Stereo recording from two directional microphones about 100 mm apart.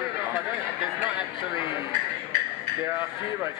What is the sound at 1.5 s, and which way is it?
Speech, 55° left (ahead or behind).